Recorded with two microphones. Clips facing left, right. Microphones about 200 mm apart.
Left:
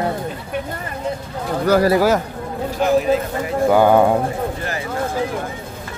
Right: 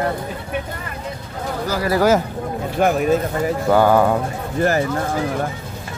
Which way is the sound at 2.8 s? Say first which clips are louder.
Even; 55° right (ahead or behind).